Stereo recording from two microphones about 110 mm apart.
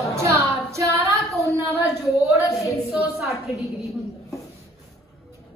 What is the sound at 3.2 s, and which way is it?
Speech, centre (ahead or behind).